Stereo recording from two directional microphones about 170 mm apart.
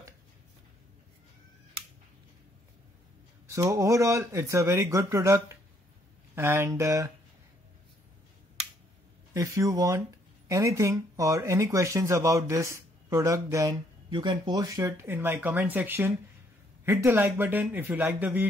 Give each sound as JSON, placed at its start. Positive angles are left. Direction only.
{"t": 3.4, "sound": "speech", "side_deg": -15}
{"t": 9.3, "sound": "speech", "side_deg": -20}